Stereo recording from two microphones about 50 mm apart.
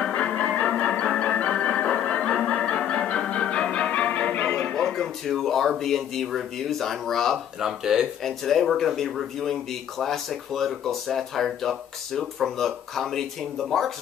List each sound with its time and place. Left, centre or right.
0.0 s music: centre
4.9 s a sound: centre
5.3 s speech: centre
7.6 s speech: centre
8.2 s speech: centre